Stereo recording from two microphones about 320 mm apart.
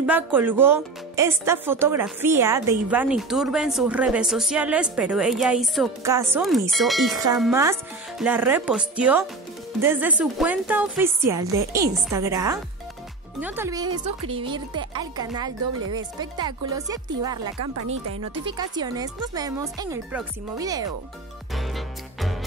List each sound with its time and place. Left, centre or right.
0.0 s a woman's voice: centre
17.6 s speech: right
18.4 s a woman's voice: centre
21.5 s music: centre